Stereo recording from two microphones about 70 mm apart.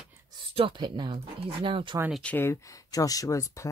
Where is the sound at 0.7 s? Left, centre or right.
Right.